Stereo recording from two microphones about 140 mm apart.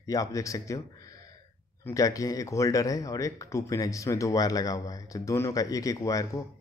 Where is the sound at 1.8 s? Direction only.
25° left (ahead or behind).